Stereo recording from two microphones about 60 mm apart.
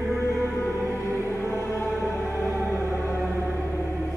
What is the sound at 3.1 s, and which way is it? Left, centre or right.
Music, right.